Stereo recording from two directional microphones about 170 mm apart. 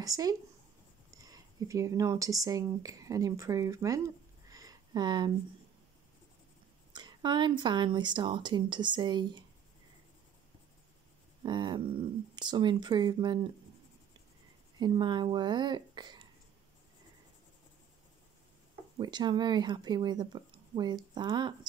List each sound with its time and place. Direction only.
0.0 s speech: 20° right (ahead or behind)
4.5 s a sound: 20° right (ahead or behind)
6.9 s speech: 25° right (ahead or behind)
11.4 s speech: 25° right (ahead or behind)
14.8 s speech: 25° right (ahead or behind)
18.9 s speech: 25° right (ahead or behind)